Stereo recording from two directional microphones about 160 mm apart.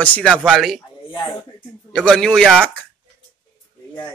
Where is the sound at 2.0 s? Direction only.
5° left (ahead or behind).